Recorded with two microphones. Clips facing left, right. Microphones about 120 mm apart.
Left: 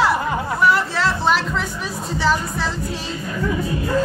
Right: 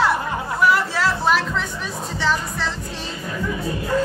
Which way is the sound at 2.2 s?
5° left (ahead or behind).